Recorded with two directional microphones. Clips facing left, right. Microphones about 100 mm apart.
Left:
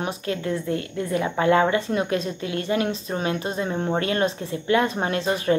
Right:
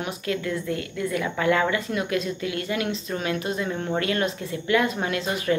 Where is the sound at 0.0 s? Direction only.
30° left (ahead or behind).